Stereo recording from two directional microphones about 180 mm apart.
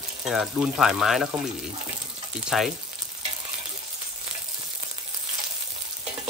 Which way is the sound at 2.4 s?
Centre (ahead or behind).